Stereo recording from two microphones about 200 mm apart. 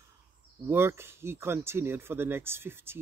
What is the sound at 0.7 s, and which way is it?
Speech, 10° right (ahead or behind).